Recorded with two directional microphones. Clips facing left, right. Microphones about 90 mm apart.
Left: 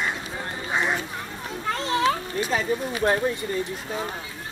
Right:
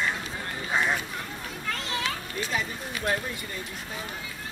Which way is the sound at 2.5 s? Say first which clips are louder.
Left 8 dB; 35° left (ahead or behind).